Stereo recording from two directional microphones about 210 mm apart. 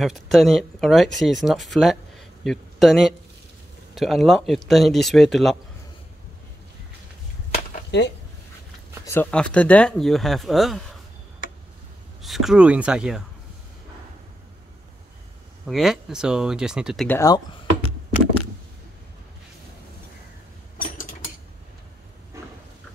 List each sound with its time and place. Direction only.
0.0 s speech: centre (ahead or behind)
7.5 s a sound: 50° left (ahead or behind)
9.0 s speech: 10° left (ahead or behind)
12.2 s speech: centre (ahead or behind)
15.6 s speech: centre (ahead or behind)
17.2 s speech: 20° left (ahead or behind)
20.7 s mechanisms: 40° left (ahead or behind)